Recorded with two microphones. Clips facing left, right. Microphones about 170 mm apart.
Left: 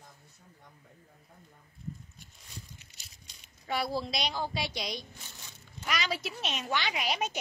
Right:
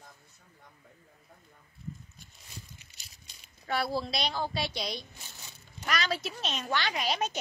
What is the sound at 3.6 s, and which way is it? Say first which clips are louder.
A woman's voice: right 1 dB; 15° left (ahead or behind).